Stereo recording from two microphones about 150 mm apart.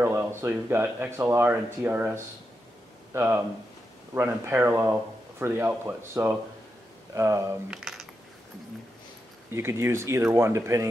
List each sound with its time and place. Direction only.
0.0 s speech: 15° right (ahead or behind)
7.7 s coin: 5° right (ahead or behind)
9.5 s speech: 15° right (ahead or behind)